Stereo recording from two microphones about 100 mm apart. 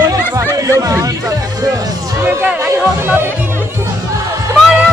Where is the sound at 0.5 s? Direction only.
35° right (ahead or behind).